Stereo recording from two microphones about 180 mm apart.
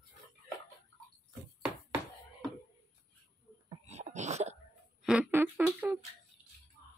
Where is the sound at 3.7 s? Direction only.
40° right (ahead or behind).